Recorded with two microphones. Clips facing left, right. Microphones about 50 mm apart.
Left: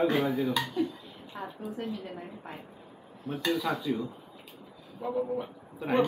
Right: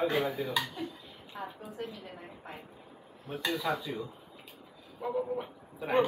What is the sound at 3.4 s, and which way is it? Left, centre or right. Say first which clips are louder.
Speech: left 3 dB; centre.